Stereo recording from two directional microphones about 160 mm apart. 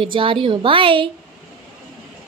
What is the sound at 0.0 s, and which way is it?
A woman's voice, 30° right (ahead or behind).